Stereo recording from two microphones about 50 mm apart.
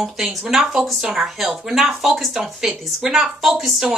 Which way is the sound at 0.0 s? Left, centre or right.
Centre.